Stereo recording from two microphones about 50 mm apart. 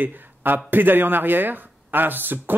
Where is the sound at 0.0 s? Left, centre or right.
Right.